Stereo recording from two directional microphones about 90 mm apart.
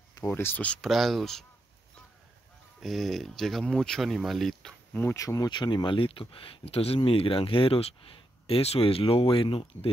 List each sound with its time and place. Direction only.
0.3 s speech: 25° left (ahead or behind)
0.7 s speech: 5° left (ahead or behind)
2.8 s speech: centre (ahead or behind)
5.1 s speech: 40° left (ahead or behind)
5.5 s speech: 55° left (ahead or behind); by 9.8 s 85° left